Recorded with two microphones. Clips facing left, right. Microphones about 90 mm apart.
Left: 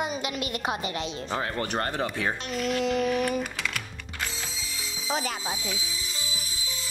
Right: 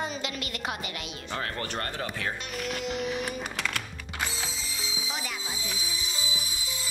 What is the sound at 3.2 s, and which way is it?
Music, centre (ahead or behind).